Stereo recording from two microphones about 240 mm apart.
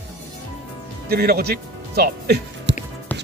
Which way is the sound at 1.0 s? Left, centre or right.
Right.